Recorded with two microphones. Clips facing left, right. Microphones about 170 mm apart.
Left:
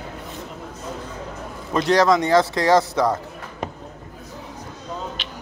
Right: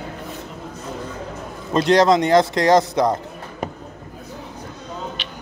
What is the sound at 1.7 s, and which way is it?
Speech, 20° right (ahead or behind).